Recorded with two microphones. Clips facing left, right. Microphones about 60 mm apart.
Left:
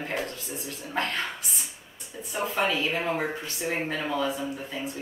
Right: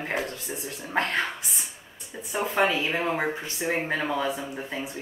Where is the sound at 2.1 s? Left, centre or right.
Right.